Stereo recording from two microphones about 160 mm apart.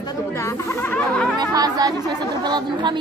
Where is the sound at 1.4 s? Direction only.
25° right (ahead or behind).